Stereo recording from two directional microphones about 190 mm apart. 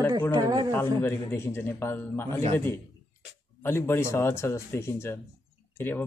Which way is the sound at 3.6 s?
10° left (ahead or behind).